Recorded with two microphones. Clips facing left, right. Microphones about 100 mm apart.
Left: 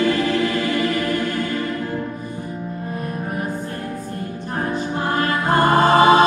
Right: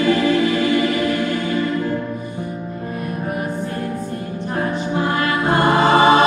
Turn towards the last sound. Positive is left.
turn(degrees=40)  # may be behind; listen again after turning